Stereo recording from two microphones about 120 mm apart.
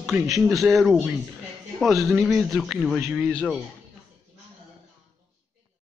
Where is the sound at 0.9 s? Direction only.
10° right (ahead or behind).